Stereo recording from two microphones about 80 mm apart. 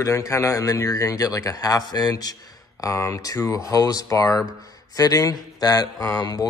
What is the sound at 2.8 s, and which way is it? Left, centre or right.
Speech, left.